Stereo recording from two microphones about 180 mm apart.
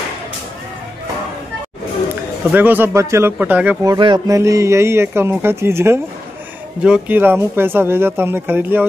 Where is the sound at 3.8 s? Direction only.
25° right (ahead or behind).